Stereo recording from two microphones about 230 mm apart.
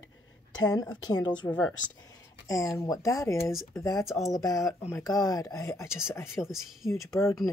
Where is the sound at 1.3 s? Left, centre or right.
Centre.